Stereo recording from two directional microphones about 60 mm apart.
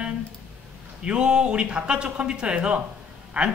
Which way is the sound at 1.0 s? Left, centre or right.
Centre.